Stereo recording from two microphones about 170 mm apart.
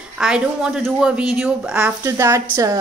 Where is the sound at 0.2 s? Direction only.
5° right (ahead or behind).